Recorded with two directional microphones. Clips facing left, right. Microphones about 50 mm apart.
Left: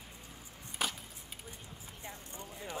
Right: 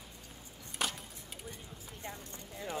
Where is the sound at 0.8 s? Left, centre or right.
Centre.